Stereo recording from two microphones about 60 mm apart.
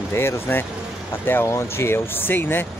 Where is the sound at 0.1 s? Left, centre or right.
Left.